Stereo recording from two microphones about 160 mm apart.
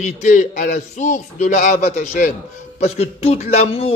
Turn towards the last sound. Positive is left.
turn(degrees=40)  # may be behind; listen again after turning